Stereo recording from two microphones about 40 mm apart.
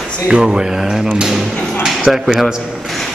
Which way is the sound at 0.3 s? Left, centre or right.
Centre.